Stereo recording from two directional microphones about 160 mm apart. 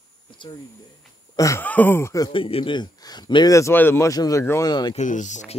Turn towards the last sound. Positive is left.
turn(degrees=50)  # may be behind; listen again after turning